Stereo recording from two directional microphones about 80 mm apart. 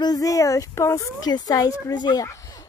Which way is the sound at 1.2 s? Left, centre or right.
Left.